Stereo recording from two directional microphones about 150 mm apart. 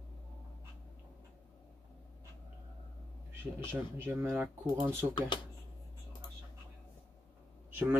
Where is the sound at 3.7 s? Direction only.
15° right (ahead or behind).